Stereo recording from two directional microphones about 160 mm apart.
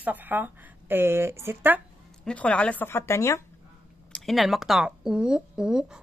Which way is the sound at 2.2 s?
10° left (ahead or behind).